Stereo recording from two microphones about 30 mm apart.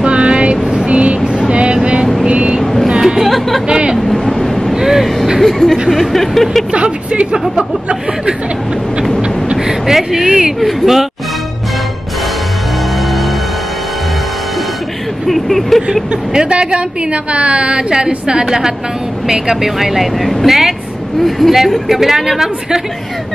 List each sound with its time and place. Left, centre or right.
0.0 s vehicle: right
2.6 s vehicle: centre
3.2 s chatter: centre
3.6 s vehicle: right
4.7 s vehicle: centre
5.4 s a sound: centre
5.9 s speech: centre
6.7 s vehicle: right
7.3 s speech: right
9.9 s speech: centre
15.2 s speech: centre
16.4 s a woman's voice: right; by 22.3 s centre